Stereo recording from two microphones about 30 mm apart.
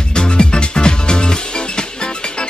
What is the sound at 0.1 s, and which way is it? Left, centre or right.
Music, left.